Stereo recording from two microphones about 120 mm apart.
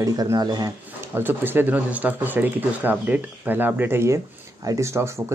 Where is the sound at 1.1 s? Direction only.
15° right (ahead or behind).